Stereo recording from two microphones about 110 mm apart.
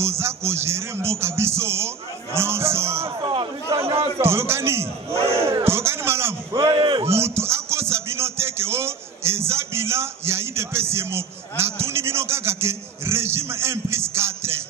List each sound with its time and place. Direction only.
0.0 s speech: 25° right (ahead or behind)
3.2 s a man's voice: 45° right (ahead or behind)
3.7 s a man's voice: 60° right (ahead or behind)
4.2 s speech: 25° right (ahead or behind)
6.7 s a man's voice: 45° right (ahead or behind)
7.1 s speech: 25° right (ahead or behind)